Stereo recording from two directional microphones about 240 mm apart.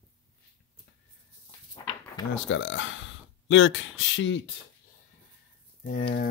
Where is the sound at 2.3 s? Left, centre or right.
Left.